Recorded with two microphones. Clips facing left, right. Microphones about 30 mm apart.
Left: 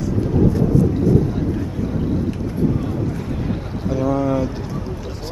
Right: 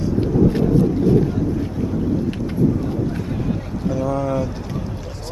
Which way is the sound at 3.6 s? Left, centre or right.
Left.